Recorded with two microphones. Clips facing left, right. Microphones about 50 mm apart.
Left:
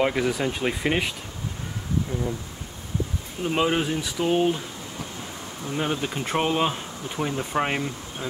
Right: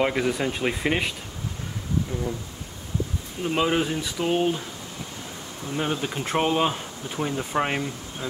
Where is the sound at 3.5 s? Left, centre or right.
Centre.